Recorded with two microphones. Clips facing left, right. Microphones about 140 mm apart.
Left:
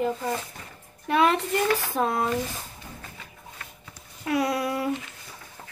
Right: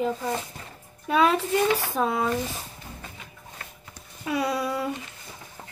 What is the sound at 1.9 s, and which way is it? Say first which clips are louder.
Speech: even; centre (ahead or behind).